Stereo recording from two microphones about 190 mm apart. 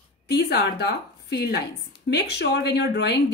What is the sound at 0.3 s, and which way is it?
A woman's voice, 55° left (ahead or behind).